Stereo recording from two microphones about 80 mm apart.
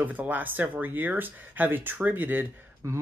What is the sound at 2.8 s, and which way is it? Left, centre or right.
Speech, right.